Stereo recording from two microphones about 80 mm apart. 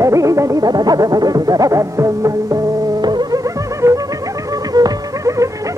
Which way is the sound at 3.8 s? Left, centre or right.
Right.